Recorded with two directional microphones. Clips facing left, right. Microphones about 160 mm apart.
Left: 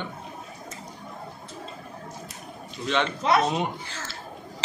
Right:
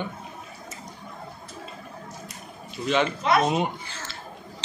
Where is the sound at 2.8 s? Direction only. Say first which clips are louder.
Right 2 dB; 5° right (ahead or behind).